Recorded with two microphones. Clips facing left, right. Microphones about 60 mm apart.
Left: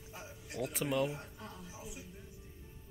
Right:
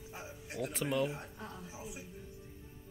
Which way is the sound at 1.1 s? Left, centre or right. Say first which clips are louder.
Right 1 dB; right.